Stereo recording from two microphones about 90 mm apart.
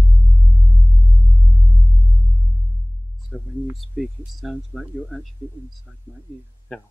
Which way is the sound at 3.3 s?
10° right (ahead or behind).